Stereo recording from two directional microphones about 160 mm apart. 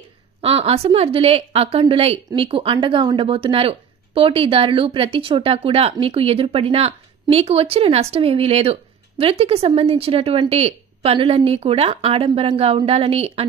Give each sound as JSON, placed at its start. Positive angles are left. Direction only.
{"t": 0.4, "sound": "a woman's voice", "side_deg": -40}